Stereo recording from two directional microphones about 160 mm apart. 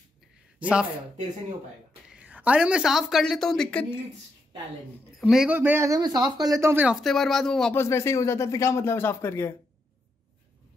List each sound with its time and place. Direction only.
0.6 s speech: 10° right (ahead or behind)
2.0 s a woman's voice: 10° right (ahead or behind)
5.2 s speech: 5° right (ahead or behind)
7.0 s speech: centre (ahead or behind)
7.7 s speech: 15° left (ahead or behind)